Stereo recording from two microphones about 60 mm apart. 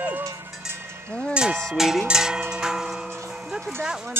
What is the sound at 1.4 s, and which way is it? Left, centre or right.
Cowbell, centre.